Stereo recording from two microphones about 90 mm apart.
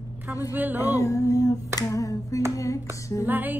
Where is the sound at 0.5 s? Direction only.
20° right (ahead or behind).